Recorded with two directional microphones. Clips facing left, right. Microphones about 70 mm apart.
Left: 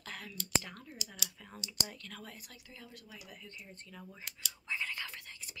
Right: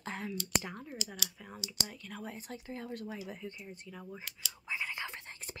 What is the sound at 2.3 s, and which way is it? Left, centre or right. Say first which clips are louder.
Speech: right 10 dB; right.